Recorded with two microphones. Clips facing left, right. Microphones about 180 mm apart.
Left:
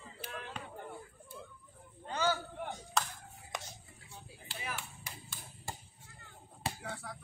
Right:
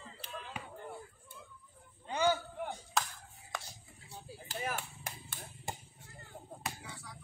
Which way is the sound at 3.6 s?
40° right (ahead or behind).